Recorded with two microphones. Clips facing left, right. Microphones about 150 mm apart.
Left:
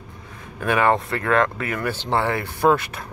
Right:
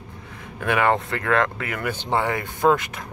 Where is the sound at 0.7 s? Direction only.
25° left (ahead or behind).